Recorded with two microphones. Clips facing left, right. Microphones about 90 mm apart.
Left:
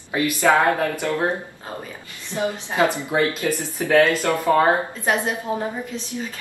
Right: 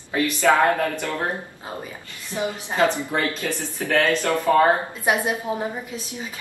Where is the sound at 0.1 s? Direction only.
20° left (ahead or behind).